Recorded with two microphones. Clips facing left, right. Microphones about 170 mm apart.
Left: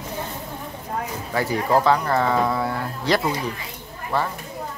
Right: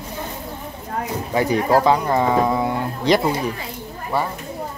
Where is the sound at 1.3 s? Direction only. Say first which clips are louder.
Right 3 dB; 20° right (ahead or behind).